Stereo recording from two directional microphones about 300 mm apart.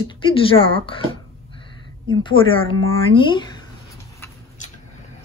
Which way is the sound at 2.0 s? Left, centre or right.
Centre.